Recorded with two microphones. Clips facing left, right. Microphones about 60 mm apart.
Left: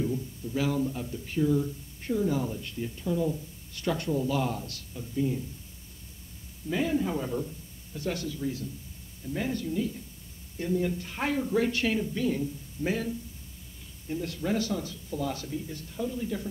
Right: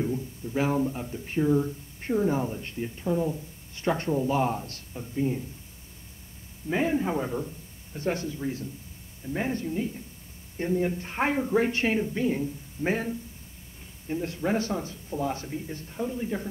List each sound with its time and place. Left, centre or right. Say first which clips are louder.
0.0 s speech: right 1 dB; right
6.7 s speech: right 2 dB; right